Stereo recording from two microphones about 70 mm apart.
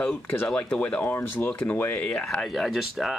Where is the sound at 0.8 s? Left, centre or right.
Centre.